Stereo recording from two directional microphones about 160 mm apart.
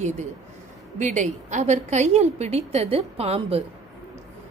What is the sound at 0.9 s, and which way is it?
A woman's voice, 50° right (ahead or behind).